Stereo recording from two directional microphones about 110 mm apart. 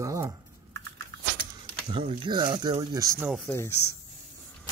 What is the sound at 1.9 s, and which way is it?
Speech, 50° right (ahead or behind).